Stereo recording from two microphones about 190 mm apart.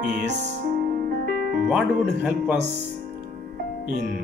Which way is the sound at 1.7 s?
5° right (ahead or behind).